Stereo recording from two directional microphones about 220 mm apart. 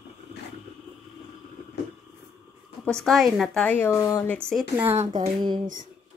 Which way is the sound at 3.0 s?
Centre (ahead or behind).